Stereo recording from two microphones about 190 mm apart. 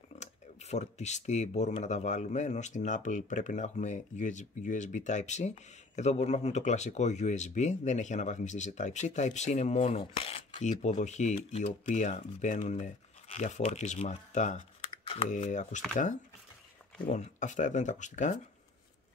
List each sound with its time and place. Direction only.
0.2 s speech: 35° left (ahead or behind)
17.0 s speech: 40° left (ahead or behind)